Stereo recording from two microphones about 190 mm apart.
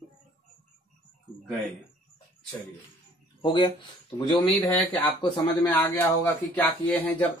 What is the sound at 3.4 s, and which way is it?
Speech, 25° left (ahead or behind).